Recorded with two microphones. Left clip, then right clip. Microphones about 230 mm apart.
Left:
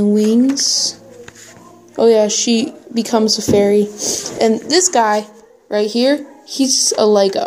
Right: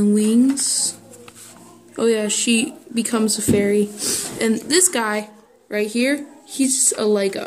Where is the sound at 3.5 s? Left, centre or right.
Centre.